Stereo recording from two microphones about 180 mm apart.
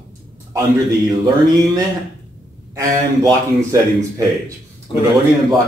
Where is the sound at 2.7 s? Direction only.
20° right (ahead or behind).